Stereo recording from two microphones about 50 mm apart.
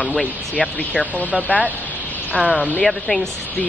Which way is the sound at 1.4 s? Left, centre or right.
Left.